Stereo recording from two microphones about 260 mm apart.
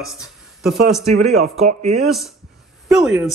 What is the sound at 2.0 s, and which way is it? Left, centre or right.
Speech, centre.